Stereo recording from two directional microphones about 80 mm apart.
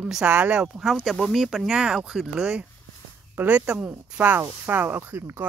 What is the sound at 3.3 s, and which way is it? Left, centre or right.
Speech, right.